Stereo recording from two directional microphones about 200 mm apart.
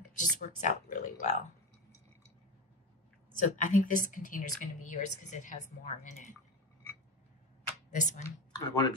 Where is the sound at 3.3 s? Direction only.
40° left (ahead or behind).